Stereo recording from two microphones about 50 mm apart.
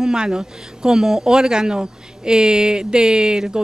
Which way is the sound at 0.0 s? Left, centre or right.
Centre.